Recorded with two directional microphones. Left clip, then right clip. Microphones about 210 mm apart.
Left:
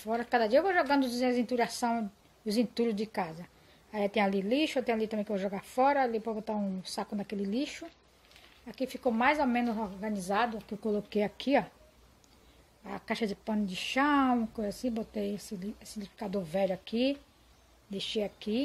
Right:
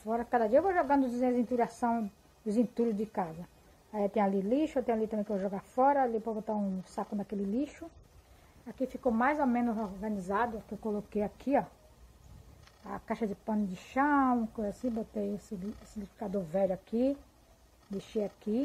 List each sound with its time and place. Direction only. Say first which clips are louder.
0.0 s a woman's voice: left 1 dB; 5° left (ahead or behind)
8.7 s a woman's voice: even; centre (ahead or behind)
12.8 s a woman's voice: left 2 dB; 15° left (ahead or behind)